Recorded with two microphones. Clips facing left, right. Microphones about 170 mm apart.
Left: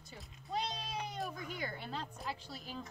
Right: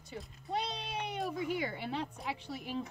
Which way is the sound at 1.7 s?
70° right (ahead or behind).